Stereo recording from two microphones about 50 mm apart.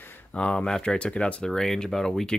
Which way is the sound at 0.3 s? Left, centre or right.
Left.